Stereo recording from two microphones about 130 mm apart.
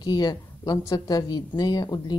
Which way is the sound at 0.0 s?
30° left (ahead or behind).